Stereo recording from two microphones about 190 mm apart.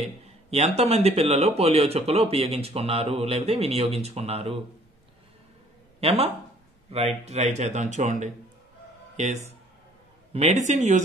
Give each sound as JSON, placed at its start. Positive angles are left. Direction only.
{"t": 0.5, "sound": "speech", "side_deg": -35}
{"t": 5.9, "sound": "speech", "side_deg": -30}